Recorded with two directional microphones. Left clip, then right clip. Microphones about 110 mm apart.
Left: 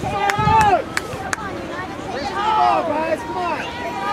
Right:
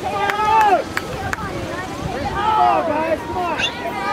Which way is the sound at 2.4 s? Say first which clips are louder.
Right 1 dB; 25° left (ahead or behind).